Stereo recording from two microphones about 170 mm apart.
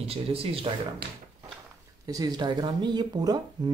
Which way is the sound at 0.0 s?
35° right (ahead or behind).